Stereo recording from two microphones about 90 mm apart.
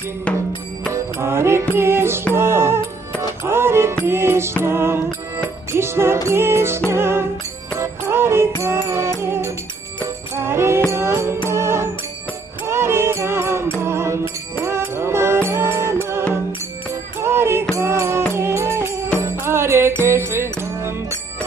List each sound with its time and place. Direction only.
0.9 s music: 30° right (ahead or behind)